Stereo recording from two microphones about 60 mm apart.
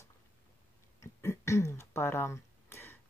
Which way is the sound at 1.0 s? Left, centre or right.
Left.